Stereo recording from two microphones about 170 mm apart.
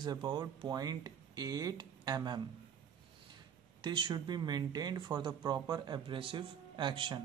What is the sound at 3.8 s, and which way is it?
A man's voice, 25° right (ahead or behind).